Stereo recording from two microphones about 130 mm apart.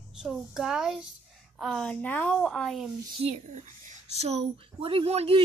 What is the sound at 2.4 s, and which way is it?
Speech, centre (ahead or behind).